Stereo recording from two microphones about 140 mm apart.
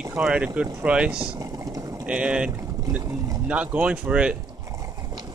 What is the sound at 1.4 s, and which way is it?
Boiling, 25° right (ahead or behind).